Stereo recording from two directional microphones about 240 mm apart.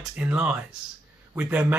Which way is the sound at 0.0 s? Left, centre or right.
Centre.